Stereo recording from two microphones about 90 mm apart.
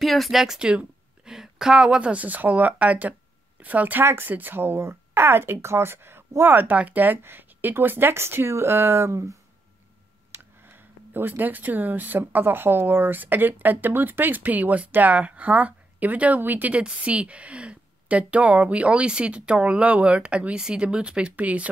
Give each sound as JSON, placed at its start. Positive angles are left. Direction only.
{"t": 0.0, "sound": "speech", "side_deg": 0}
{"t": 10.6, "sound": "speech", "side_deg": -25}